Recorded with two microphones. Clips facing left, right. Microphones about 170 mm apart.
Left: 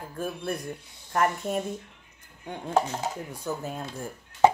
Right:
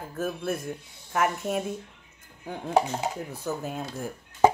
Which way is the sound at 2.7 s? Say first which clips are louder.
Right 2 dB; 15° right (ahead or behind).